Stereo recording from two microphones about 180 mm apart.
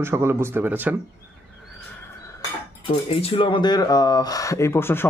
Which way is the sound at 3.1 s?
35° left (ahead or behind).